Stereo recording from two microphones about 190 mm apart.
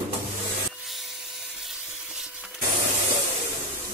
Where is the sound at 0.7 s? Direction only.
Centre (ahead or behind).